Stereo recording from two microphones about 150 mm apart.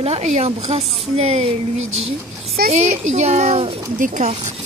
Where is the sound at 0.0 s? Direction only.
45° right (ahead or behind).